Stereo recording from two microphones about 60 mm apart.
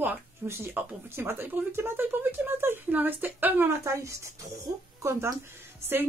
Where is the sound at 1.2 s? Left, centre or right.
Right.